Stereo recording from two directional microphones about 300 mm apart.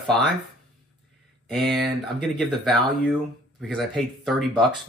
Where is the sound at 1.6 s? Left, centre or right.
Right.